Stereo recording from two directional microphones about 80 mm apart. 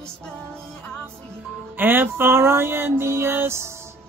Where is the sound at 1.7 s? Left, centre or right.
Right.